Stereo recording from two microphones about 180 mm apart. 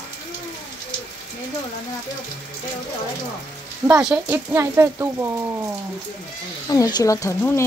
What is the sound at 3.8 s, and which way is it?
Speech, 20° right (ahead or behind).